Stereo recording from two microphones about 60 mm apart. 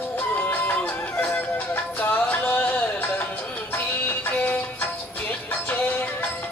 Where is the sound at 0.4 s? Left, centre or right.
Left.